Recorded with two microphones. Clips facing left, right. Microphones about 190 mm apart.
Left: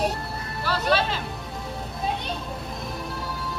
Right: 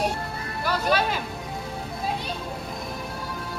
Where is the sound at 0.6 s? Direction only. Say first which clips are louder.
Even; 10° right (ahead or behind).